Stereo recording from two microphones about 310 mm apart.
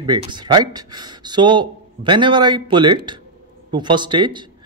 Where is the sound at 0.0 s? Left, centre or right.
Centre.